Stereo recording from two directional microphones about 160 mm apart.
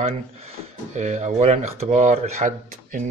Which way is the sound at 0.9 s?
45° right (ahead or behind).